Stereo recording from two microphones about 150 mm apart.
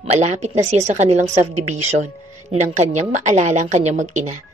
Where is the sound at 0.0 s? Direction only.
45° right (ahead or behind).